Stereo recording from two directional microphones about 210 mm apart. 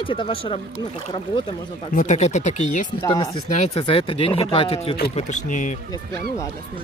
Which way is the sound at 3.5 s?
30° left (ahead or behind).